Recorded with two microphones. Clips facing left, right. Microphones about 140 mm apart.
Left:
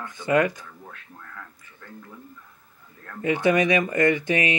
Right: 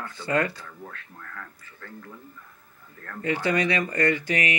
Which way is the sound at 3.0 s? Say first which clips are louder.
Left 4 dB; 20° left (ahead or behind).